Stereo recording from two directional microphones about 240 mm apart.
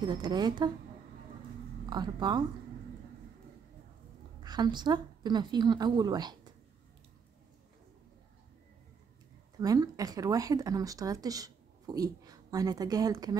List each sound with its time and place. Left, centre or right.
0.0 s speech: centre
1.9 s speech: centre
4.4 s a woman's voice: centre
9.6 s speech: centre